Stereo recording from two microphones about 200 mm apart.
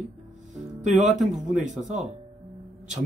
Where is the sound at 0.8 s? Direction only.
35° right (ahead or behind).